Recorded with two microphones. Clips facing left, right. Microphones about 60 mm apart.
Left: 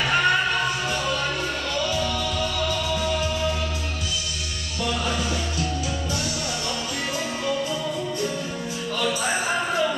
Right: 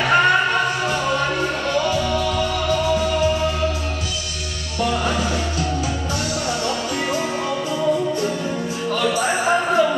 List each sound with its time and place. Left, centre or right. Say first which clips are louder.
0.0 s music: right 5 dB; right
4.9 s music: right 4 dB; right
9.1 s music: right 6 dB; right